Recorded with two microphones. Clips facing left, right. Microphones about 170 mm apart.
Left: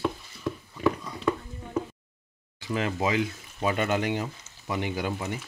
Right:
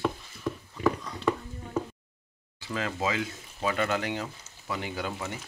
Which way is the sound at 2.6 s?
15° left (ahead or behind).